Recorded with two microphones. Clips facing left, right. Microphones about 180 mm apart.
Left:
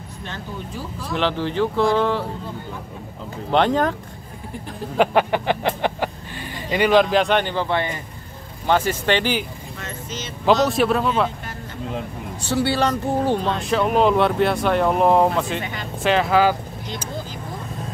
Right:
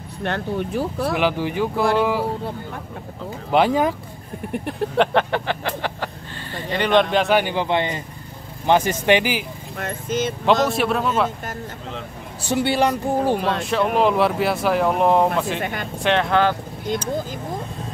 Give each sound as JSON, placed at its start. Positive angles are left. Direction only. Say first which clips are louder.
{"t": 0.2, "sound": "speech", "louder": "right 9 dB", "side_deg": -65}
{"t": 1.1, "sound": "speech", "louder": "left 3 dB", "side_deg": -10}
{"t": 3.5, "sound": "speech", "louder": "right 1 dB", "side_deg": -10}
{"t": 4.9, "sound": "a sound", "louder": "left 2 dB", "side_deg": 5}
{"t": 6.5, "sound": "speech", "louder": "left 2 dB", "side_deg": 10}
{"t": 9.8, "sound": "speech", "louder": "right 10 dB", "side_deg": -55}
{"t": 10.4, "sound": "speech", "louder": "left 3 dB", "side_deg": 0}
{"t": 12.4, "sound": "speech", "louder": "right 1 dB", "side_deg": -15}
{"t": 13.6, "sound": "speech", "louder": "left 1 dB", "side_deg": 0}
{"t": 15.6, "sound": "speech", "louder": "right 4 dB", "side_deg": -55}
{"t": 16.0, "sound": "speech", "louder": "left 1 dB", "side_deg": 0}